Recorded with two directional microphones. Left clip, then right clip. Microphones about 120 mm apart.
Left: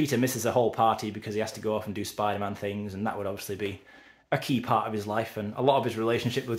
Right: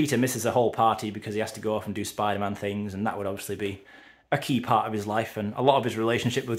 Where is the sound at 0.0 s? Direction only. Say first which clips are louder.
Right 2 dB; 30° right (ahead or behind).